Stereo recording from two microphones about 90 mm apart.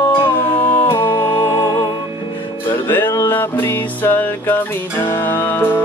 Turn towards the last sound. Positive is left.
turn(degrees=20)  # may be behind; listen again after turning